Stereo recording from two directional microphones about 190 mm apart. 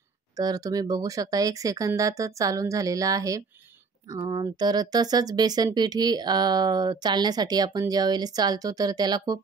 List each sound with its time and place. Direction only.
0.4 s speech: 20° right (ahead or behind)